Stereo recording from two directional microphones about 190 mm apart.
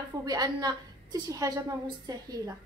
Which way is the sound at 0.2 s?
20° right (ahead or behind).